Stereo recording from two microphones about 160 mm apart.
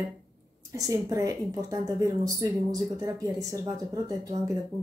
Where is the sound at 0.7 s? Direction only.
20° right (ahead or behind).